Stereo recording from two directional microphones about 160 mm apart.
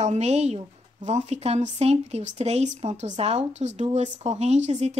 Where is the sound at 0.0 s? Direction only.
45° right (ahead or behind).